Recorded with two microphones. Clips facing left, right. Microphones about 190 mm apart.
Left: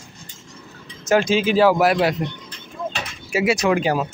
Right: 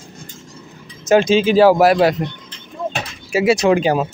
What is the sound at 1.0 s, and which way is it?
Speech, 20° right (ahead or behind).